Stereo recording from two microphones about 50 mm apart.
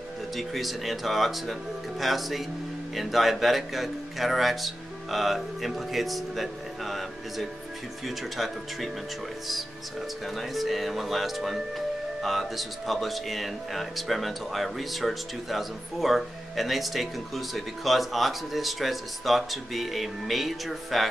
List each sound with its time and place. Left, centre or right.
0.4 s speech: centre
10.2 s speech: centre